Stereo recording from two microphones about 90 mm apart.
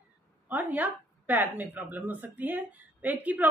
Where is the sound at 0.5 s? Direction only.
20° right (ahead or behind).